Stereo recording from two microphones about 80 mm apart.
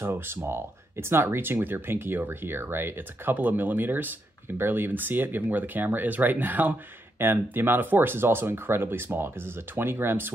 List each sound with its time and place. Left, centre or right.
0.0 s speech: right